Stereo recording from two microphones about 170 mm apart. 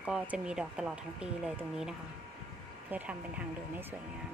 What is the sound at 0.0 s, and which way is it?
A woman's voice, 5° right (ahead or behind).